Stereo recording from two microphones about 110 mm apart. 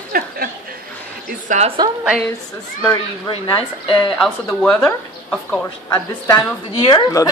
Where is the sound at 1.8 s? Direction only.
35° right (ahead or behind).